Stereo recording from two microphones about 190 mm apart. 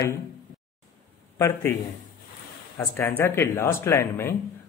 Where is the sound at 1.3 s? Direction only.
15° left (ahead or behind).